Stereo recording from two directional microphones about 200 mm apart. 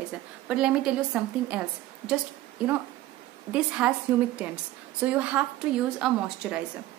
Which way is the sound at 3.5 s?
5° right (ahead or behind).